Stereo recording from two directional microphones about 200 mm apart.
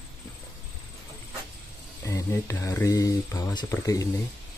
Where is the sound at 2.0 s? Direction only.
15° left (ahead or behind).